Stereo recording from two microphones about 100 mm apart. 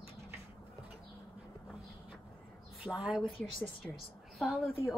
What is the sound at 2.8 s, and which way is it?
Speech, 5° right (ahead or behind).